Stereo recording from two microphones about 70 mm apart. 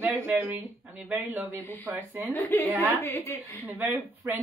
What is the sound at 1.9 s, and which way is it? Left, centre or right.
Speech, right.